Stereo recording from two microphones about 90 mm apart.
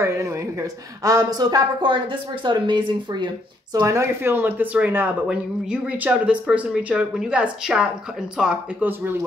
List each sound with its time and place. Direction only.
0.0 s a woman's voice: 30° right (ahead or behind)
1.9 s speech: 65° right (ahead or behind)
3.8 s speech: 30° right (ahead or behind); by 8.8 s 10° right (ahead or behind)